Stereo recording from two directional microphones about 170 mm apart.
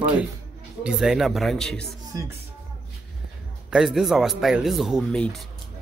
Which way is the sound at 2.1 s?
20° right (ahead or behind).